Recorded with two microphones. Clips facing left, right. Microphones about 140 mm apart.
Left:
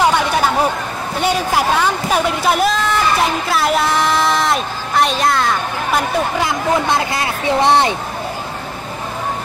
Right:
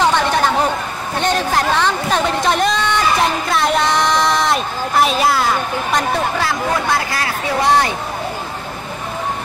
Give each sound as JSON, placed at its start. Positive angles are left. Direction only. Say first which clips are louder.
{"t": 0.0, "sound": "a sound", "louder": "even", "side_deg": 10}
{"t": 1.2, "sound": "a woman's voice", "louder": "left 1 dB", "side_deg": 10}
{"t": 6.4, "sound": "speech", "louder": "left 2 dB", "side_deg": 20}